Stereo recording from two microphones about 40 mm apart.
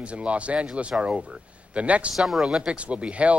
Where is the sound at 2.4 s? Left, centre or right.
Right.